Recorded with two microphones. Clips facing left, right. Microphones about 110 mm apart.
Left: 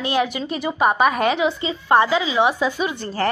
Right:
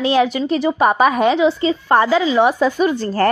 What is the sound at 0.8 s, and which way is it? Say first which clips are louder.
Speech: right 2 dB; 5° right (ahead or behind).